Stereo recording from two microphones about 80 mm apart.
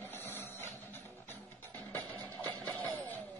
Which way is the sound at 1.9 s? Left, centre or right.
Left.